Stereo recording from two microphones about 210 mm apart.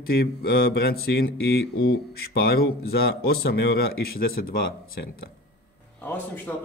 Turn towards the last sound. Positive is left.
turn(degrees=10)  # may be behind; listen again after turning